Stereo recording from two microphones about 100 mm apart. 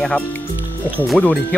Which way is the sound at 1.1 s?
5° left (ahead or behind).